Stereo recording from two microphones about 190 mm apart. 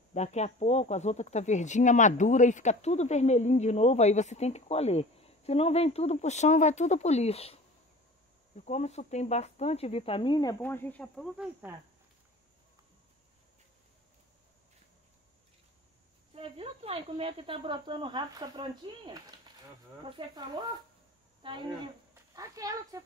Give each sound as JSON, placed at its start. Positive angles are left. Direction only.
{"t": 0.1, "sound": "speech", "side_deg": 35}
{"t": 8.6, "sound": "speech", "side_deg": 35}
{"t": 10.6, "sound": "speech", "side_deg": 10}
{"t": 16.3, "sound": "speech", "side_deg": -30}